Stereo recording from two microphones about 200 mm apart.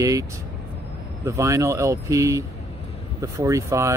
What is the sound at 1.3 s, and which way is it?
Speech, 15° right (ahead or behind).